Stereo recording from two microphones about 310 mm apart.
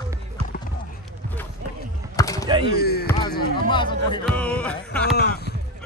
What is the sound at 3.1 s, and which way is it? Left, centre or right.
Basketball bounce, centre.